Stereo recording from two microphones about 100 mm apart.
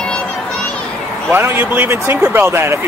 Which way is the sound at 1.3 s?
20° right (ahead or behind).